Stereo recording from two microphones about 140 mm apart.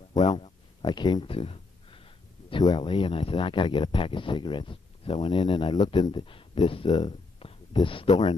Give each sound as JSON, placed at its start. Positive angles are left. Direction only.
{"t": 0.2, "sound": "speech", "side_deg": 30}
{"t": 2.5, "sound": "speech", "side_deg": 30}